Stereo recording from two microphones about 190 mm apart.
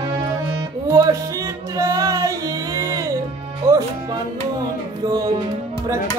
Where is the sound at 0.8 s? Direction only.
15° right (ahead or behind).